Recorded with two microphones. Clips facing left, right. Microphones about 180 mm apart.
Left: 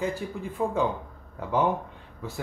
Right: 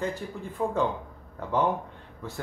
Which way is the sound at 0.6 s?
10° left (ahead or behind).